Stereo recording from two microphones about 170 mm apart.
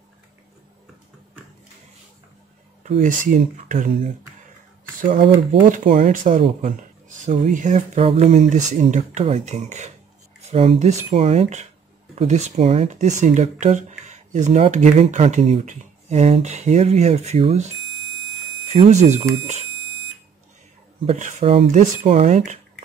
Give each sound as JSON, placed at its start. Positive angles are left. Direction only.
{"t": 2.8, "sound": "speech", "side_deg": -45}
{"t": 5.7, "sound": "speech", "side_deg": -45}
{"t": 18.7, "sound": "speech", "side_deg": -40}
{"t": 21.0, "sound": "speech", "side_deg": -45}